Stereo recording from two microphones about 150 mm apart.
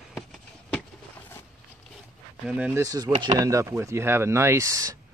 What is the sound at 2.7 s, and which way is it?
Speech, 25° right (ahead or behind).